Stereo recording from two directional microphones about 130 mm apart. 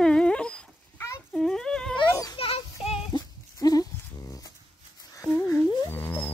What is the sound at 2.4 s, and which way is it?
Children playing, 50° left (ahead or behind).